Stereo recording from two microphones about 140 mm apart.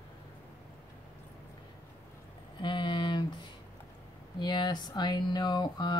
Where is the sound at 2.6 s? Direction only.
35° left (ahead or behind).